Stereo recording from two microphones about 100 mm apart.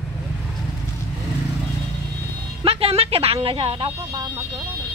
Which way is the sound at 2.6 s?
75° right (ahead or behind).